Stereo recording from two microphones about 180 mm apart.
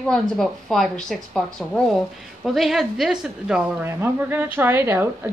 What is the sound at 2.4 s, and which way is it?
A woman's voice, centre (ahead or behind).